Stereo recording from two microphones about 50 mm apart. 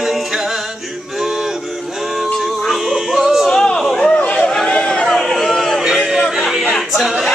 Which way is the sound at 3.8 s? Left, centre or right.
Centre.